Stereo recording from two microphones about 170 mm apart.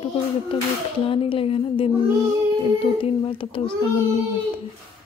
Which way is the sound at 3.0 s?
30° left (ahead or behind).